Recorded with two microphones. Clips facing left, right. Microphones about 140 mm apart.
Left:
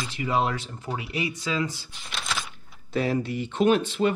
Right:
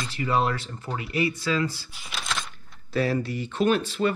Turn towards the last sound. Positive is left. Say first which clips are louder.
# left 2 dB
turn(degrees=15)  # may be behind; listen again after turning